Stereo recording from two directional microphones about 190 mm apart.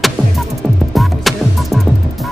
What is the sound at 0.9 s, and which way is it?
Music, centre (ahead or behind).